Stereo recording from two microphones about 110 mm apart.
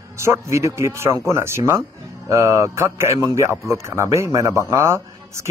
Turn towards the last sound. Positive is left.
turn(degrees=-25)  # may be behind; listen again after turning